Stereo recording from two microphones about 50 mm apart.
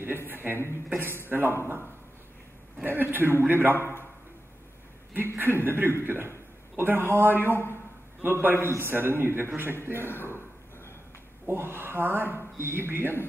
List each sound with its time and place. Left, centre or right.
0.3 s a sound: right
0.9 s speech: right
2.8 s speech: right
3.7 s a man's voice: left
5.1 s speech: right
9.9 s a man's voice: left
11.4 s speech: right